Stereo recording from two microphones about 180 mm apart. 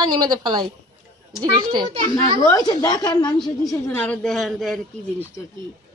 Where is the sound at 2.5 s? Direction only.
25° left (ahead or behind).